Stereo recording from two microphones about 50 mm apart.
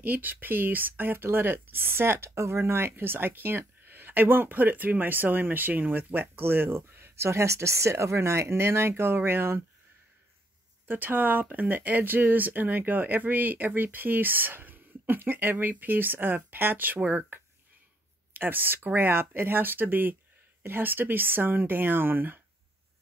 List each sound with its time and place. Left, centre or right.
0.0 s speech: right
7.2 s speech: right
10.9 s speech: right